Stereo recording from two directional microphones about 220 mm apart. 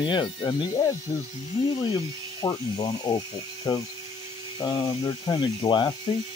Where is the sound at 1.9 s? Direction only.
20° left (ahead or behind).